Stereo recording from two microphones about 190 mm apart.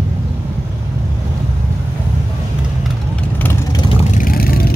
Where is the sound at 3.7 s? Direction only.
30° left (ahead or behind); by 4.7 s 50° left (ahead or behind).